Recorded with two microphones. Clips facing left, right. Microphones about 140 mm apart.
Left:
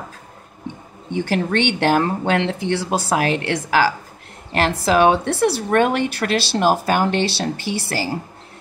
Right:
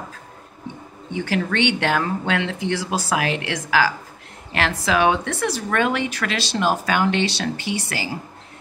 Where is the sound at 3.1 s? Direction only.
35° left (ahead or behind).